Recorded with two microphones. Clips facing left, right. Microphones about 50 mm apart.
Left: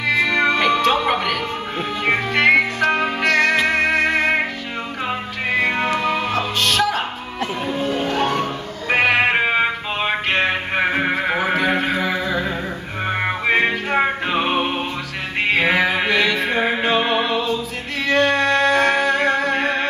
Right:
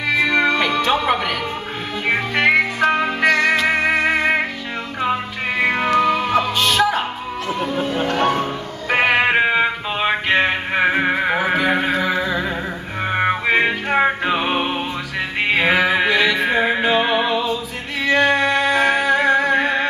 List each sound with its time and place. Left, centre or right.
0.2 s music: centre
0.5 s music: centre
6.3 s music: centre
9.0 s music: centre
10.7 s a sound: centre
12.3 s humming: centre
13.0 s music: centre
15.5 s music: centre